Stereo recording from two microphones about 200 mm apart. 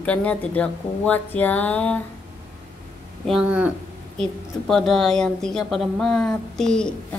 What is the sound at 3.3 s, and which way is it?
A woman's voice, 5° right (ahead or behind).